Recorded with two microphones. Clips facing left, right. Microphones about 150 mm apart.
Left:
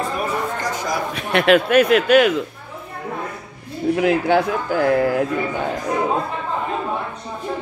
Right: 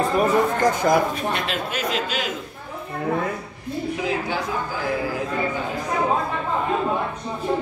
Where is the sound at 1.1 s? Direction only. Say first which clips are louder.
Left 10 dB; 70° left (ahead or behind).